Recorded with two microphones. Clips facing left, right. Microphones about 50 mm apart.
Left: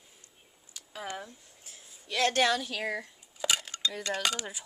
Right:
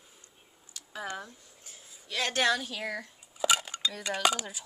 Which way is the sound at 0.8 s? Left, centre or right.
Centre.